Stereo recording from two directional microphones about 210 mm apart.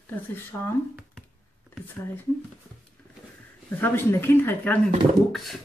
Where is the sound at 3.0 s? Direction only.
10° left (ahead or behind).